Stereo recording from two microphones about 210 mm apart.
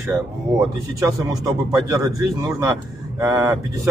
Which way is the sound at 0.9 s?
15° right (ahead or behind).